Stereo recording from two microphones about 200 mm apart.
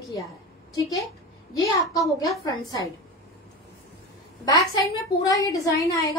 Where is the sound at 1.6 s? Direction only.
15° left (ahead or behind).